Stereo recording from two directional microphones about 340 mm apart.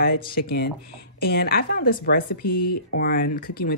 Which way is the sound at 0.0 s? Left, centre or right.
Left.